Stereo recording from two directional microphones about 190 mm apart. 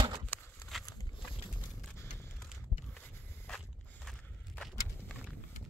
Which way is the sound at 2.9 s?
5° left (ahead or behind).